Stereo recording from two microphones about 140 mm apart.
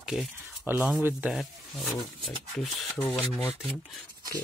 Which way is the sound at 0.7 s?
15° right (ahead or behind).